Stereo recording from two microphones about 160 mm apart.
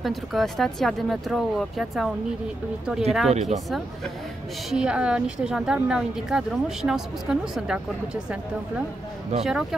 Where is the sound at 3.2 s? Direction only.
45° right (ahead or behind).